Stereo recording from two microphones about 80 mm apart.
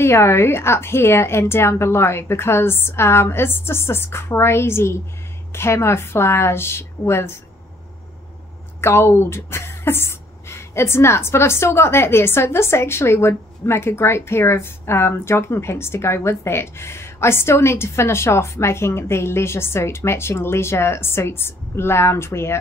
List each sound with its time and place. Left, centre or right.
0.0 s speech: left
8.8 s speech: left